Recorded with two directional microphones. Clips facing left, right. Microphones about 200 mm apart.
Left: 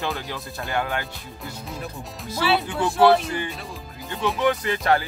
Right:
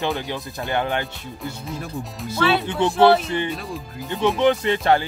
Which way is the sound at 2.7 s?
25° right (ahead or behind).